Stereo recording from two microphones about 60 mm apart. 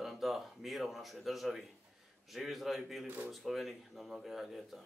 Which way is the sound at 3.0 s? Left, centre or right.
Right.